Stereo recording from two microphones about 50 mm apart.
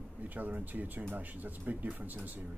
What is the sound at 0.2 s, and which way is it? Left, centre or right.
Speech, right.